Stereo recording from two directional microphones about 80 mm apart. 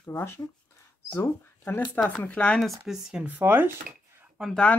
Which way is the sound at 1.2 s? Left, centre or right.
Left.